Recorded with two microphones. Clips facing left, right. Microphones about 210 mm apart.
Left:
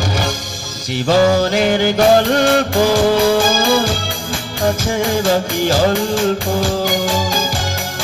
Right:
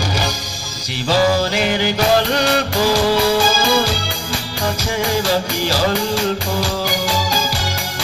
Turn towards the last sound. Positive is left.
turn(degrees=50)  # may be behind; listen again after turning